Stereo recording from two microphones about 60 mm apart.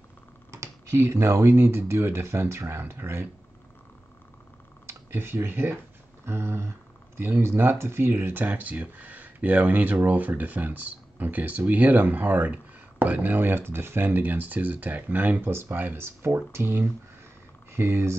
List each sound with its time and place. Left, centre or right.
0.5 s speech: right
5.1 s speech: right
8.5 s speech: right